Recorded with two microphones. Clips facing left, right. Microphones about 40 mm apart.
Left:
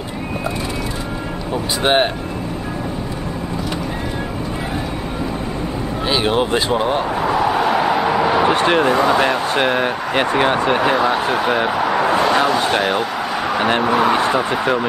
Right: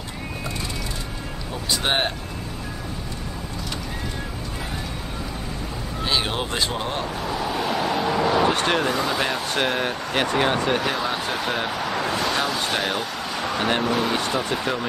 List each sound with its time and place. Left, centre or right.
1.8 s speech: left
6.0 s speech: centre
7.3 s a sound: centre
8.9 s speech: centre